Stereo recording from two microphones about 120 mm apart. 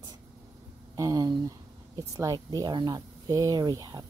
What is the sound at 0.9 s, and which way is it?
Speech, 30° right (ahead or behind).